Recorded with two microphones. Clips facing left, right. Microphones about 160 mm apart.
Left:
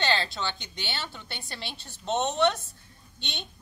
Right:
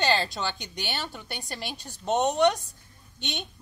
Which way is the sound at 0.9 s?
15° right (ahead or behind).